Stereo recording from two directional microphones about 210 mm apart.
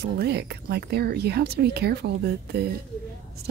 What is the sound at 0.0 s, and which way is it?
Speech, 50° right (ahead or behind).